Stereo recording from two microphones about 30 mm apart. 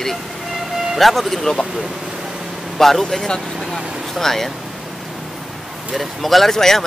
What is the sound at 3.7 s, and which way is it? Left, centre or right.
Vehicle, centre.